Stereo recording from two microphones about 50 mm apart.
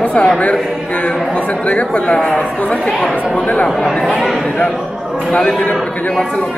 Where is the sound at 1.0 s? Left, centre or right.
Left.